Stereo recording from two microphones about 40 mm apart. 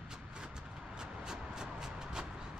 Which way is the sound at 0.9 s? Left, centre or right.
Centre.